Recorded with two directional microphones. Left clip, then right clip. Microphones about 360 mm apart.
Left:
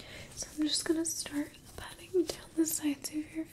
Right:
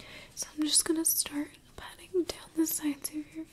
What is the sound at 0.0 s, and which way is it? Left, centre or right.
Whispering, centre.